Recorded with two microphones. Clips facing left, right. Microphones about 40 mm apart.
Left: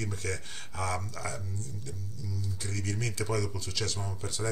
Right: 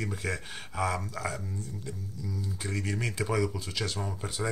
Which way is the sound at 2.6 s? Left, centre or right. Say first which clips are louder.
Right 3 dB; centre.